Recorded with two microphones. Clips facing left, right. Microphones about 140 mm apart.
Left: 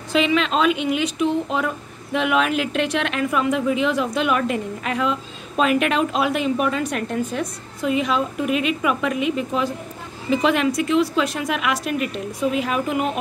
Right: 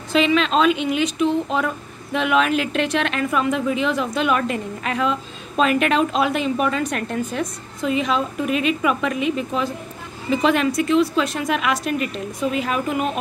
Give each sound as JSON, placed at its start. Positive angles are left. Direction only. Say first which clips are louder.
{"t": 0.1, "sound": "a woman's voice", "louder": "right 1 dB", "side_deg": 10}